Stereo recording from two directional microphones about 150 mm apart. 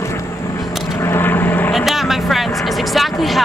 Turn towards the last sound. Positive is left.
turn(degrees=0)  # may be behind; listen again after turning